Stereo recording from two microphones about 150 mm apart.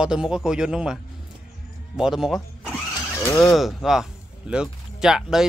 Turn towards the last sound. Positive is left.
turn(degrees=-5)  # may be behind; listen again after turning